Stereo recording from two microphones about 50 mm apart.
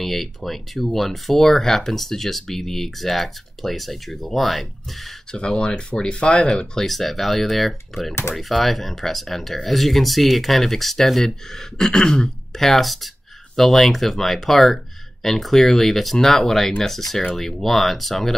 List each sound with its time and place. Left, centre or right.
0.0 s speech: centre
5.3 s speech: centre
6.9 s speech: centre
8.1 s speech: left
8.4 s speech: centre